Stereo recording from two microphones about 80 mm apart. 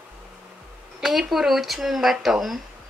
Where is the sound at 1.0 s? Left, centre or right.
Centre.